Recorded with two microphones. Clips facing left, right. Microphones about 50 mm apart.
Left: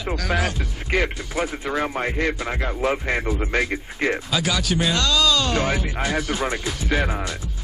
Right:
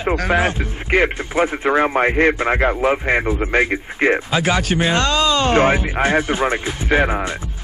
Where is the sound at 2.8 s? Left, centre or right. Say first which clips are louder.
Right 5 dB; right.